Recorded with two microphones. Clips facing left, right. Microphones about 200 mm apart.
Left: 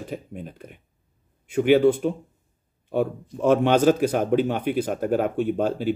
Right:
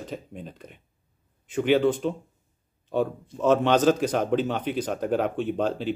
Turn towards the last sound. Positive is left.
turn(degrees=10)  # may be behind; listen again after turning